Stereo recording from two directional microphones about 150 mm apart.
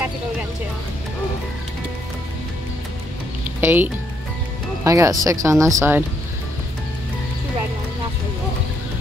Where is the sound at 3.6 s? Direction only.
15° right (ahead or behind).